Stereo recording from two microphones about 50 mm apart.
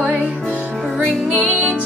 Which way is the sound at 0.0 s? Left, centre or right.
Right.